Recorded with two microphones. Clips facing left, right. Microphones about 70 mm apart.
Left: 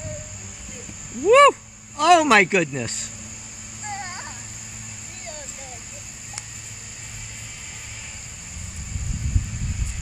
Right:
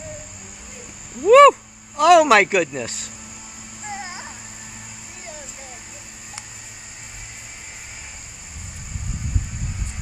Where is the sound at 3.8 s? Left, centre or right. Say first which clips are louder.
Even; centre.